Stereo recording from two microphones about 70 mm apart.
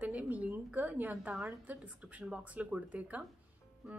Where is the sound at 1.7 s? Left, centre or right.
Centre.